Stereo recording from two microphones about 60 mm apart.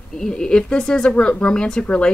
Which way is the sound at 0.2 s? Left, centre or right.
Centre.